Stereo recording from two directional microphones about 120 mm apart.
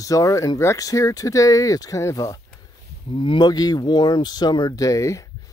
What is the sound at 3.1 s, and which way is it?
Speech, 45° left (ahead or behind).